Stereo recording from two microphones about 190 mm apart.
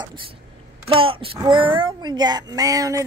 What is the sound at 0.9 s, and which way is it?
Speech, 30° right (ahead or behind).